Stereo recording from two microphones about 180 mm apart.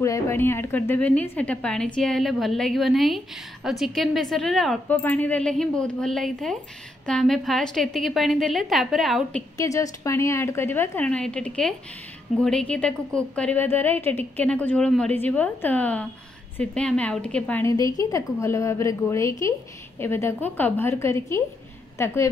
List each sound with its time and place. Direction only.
0.0 s a woman's voice: 15° left (ahead or behind); by 9.4 s centre (ahead or behind)
9.6 s a woman's voice: 15° left (ahead or behind)